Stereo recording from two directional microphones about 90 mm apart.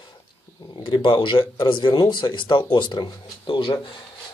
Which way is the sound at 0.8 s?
60° left (ahead or behind).